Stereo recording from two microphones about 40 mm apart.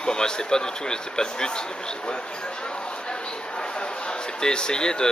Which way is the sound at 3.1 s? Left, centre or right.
Left.